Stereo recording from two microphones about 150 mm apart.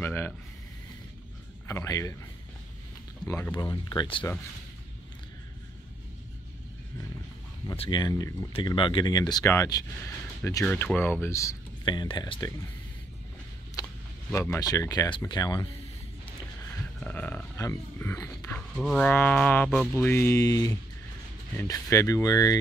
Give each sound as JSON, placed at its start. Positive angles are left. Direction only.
{"t": 0.0, "sound": "a sound", "side_deg": 15}
{"t": 1.7, "sound": "speech", "side_deg": 20}
{"t": 3.3, "sound": "speech", "side_deg": 15}
{"t": 7.7, "sound": "speech", "side_deg": 35}
{"t": 8.5, "sound": "speech", "side_deg": 35}
{"t": 13.8, "sound": "a sound", "side_deg": 25}
{"t": 14.3, "sound": "speech", "side_deg": 20}
{"t": 17.0, "sound": "speech", "side_deg": 10}
{"t": 18.8, "sound": "speech", "side_deg": 5}